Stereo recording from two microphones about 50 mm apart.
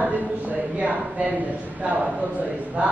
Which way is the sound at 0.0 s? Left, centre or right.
Right.